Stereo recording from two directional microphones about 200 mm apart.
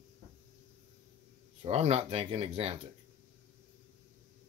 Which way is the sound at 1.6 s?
30° right (ahead or behind).